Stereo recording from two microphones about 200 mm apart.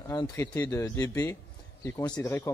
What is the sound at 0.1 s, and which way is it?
A man's voice, 15° left (ahead or behind).